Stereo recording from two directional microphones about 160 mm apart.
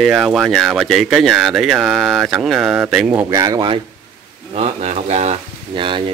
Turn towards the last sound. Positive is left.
turn(degrees=-30)  # may be behind; listen again after turning